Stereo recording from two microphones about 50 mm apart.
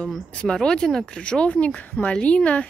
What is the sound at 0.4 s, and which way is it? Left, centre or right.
Speech, centre.